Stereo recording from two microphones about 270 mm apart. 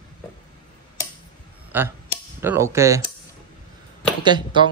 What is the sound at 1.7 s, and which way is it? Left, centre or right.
Speech, centre.